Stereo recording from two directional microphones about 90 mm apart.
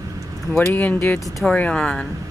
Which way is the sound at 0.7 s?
20° left (ahead or behind).